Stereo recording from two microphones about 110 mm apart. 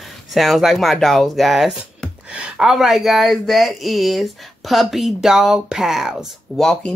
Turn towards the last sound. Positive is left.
turn(degrees=5)  # may be behind; listen again after turning